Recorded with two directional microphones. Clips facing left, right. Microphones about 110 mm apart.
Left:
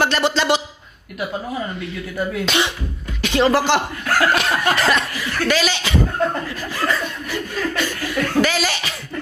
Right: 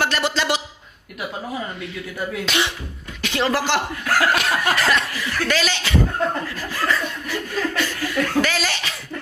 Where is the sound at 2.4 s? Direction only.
25° left (ahead or behind).